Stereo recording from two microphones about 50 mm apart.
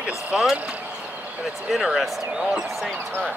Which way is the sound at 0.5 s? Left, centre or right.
Right.